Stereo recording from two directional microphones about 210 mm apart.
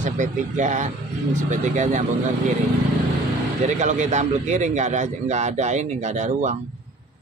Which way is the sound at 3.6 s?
35° right (ahead or behind).